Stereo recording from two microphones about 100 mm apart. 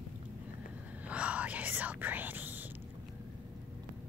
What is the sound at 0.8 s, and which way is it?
Whispering, 15° right (ahead or behind).